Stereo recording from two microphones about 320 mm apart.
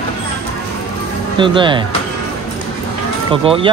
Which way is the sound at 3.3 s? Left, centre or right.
Centre.